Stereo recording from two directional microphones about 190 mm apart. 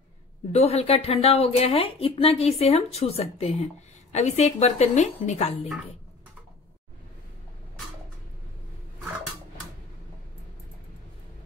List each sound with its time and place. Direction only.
0.5 s a woman's voice: 35° left (ahead or behind)